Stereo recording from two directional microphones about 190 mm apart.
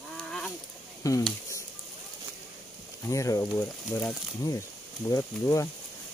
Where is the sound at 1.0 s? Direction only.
20° left (ahead or behind).